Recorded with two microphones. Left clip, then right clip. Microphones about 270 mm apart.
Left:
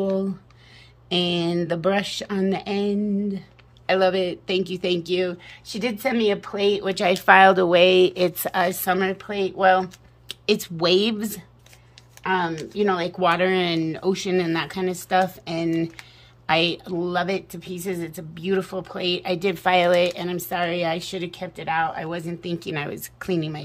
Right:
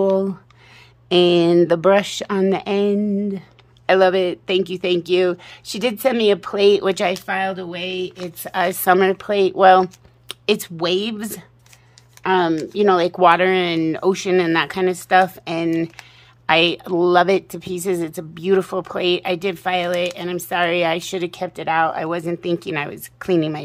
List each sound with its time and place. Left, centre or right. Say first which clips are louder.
1.0 s speech: right 9 dB; centre
7.2 s speech: left 9 dB; centre
12.2 s speech: right 6 dB; right
13.2 s speech: right 5 dB; centre